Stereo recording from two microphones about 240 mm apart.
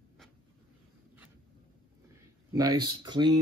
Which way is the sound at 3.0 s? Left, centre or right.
Centre.